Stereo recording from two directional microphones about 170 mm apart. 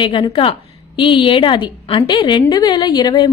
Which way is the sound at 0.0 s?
30° left (ahead or behind).